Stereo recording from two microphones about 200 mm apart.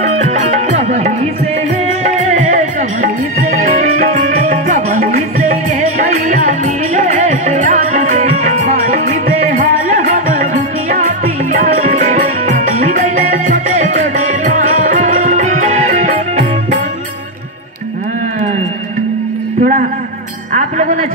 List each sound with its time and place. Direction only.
0.0 s music: 35° right (ahead or behind)
19.6 s a sound: 45° right (ahead or behind)
20.5 s music: 35° right (ahead or behind)